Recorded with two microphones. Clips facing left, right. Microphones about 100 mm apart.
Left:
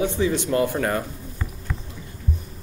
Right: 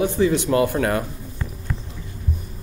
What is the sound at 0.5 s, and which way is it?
Speech, 75° right (ahead or behind).